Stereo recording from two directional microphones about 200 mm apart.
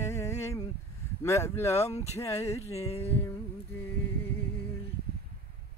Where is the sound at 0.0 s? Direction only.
15° left (ahead or behind).